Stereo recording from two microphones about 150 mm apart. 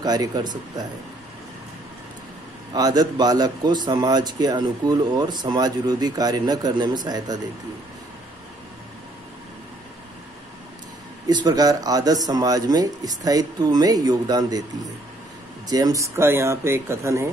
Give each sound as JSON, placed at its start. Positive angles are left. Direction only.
{"t": 0.0, "sound": "speech", "side_deg": -25}
{"t": 2.7, "sound": "speech", "side_deg": -25}
{"t": 11.2, "sound": "speech", "side_deg": -25}
{"t": 15.7, "sound": "speech", "side_deg": -25}